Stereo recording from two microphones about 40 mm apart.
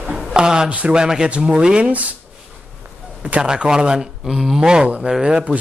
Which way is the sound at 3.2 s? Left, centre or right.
Right.